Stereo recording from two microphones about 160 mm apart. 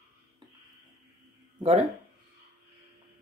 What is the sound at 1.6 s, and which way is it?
Speech, 40° right (ahead or behind).